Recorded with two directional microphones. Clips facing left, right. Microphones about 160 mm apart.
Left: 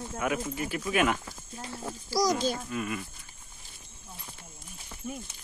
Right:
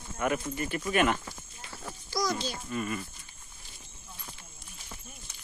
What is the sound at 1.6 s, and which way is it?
Speech, 40° left (ahead or behind).